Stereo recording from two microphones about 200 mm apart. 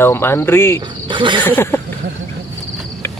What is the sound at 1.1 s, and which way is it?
Speech, 25° right (ahead or behind).